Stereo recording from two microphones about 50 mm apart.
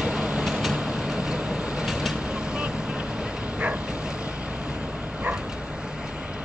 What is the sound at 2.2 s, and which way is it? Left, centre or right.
Vehicle, centre.